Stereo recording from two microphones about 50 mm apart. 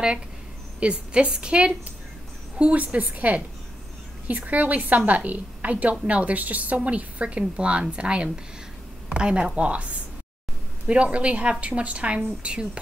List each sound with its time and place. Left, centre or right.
0.7 s a woman's voice: right